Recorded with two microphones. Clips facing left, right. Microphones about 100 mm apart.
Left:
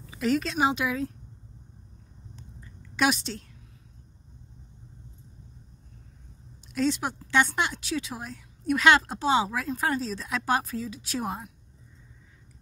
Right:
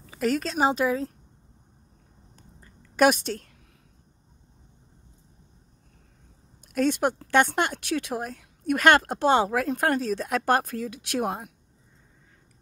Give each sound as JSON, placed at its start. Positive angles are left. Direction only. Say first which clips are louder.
{"t": 0.0, "sound": "speech", "louder": "even", "side_deg": -50}
{"t": 2.3, "sound": "a sound", "louder": "left 3 dB", "side_deg": -45}
{"t": 6.7, "sound": "speech", "louder": "right 3 dB", "side_deg": -55}